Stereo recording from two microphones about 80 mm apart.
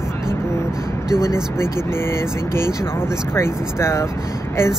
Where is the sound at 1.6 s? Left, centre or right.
Left.